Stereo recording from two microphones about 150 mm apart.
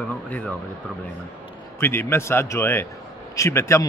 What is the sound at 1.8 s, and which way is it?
A man's voice, 15° left (ahead or behind).